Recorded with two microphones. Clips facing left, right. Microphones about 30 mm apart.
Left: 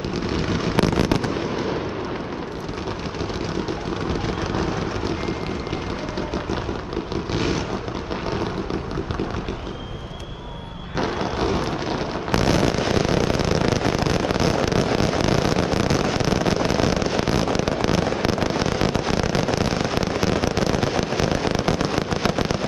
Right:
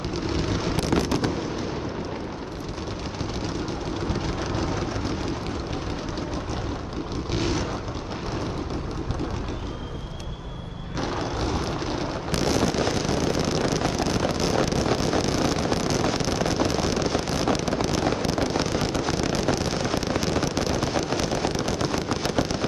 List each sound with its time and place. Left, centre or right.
0.3 s fireworks: centre
0.7 s fireworks: left
4.1 s vehicle: centre
7.3 s vehicle: centre
11.0 s a sound: left
17.2 s fireworks: left
18.6 s a sound: centre